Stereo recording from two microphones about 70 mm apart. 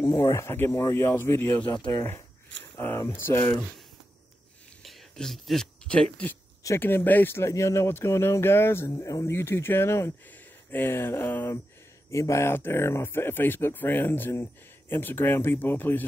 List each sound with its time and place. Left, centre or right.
0.0 s speech: left
3.1 s speech: left
4.8 s a sound: centre
6.8 s speech: left
9.3 s speech: left
10.3 s speech: left
12.1 s speech: left